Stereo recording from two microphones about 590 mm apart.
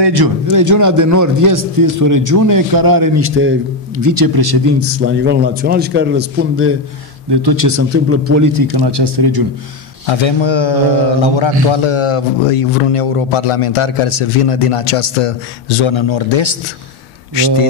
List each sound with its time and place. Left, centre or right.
0.0 s a man's voice: right
3.2 s speech: centre
4.0 s a man's voice: right
4.7 s a man's voice: right
7.2 s speech: right
8.5 s a man's voice: right
10.0 s speech: left